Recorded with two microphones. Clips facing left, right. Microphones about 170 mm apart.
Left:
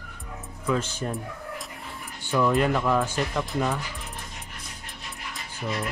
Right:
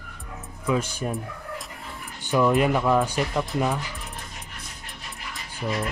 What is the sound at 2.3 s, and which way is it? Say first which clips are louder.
Speech: right 2 dB; 15° right (ahead or behind).